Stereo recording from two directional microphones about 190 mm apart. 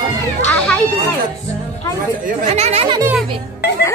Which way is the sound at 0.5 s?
5° left (ahead or behind).